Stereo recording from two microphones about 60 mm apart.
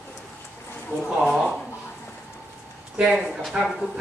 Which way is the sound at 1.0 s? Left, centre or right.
Centre.